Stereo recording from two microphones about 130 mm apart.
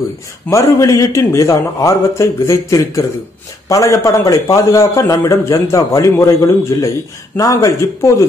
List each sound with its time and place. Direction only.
0.5 s a man's voice: 25° left (ahead or behind)